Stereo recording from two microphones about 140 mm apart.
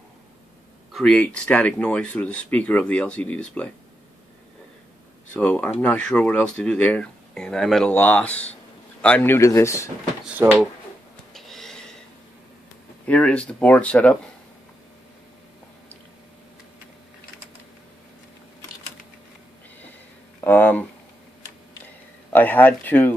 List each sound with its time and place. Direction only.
0.9 s speech: 5° left (ahead or behind)
5.3 s speech: 10° left (ahead or behind)
10.2 s speech: 10° right (ahead or behind)
11.3 s a sound: centre (ahead or behind)
13.0 s speech: 10° left (ahead or behind)
20.3 s a sound: 15° left (ahead or behind)
22.3 s speech: 15° left (ahead or behind)